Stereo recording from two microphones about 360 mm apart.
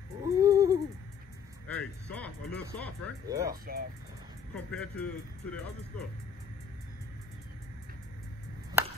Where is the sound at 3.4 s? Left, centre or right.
Right.